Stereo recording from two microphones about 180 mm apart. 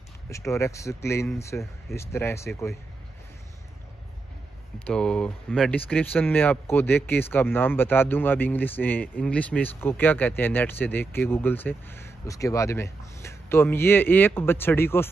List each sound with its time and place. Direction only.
0.3 s speech: 15° left (ahead or behind)
4.8 s speech: 5° left (ahead or behind)